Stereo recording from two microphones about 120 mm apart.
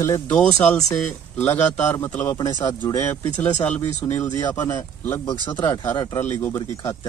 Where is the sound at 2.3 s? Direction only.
35° left (ahead or behind).